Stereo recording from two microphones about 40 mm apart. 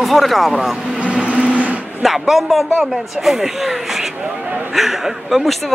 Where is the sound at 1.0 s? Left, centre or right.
Right.